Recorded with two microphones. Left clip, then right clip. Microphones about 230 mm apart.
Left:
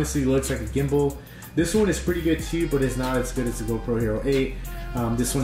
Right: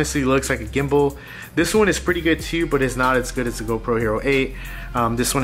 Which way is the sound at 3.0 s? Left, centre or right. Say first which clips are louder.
Right 7 dB; centre.